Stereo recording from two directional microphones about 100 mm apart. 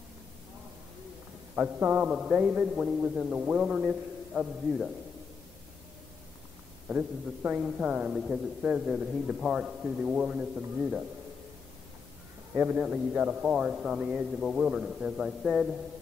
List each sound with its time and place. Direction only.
1.5 s a man's voice: 15° right (ahead or behind)
6.9 s a man's voice: 10° right (ahead or behind)
12.5 s a man's voice: 15° right (ahead or behind)